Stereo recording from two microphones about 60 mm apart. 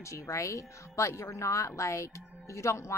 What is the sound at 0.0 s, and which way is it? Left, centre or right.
Speech, left.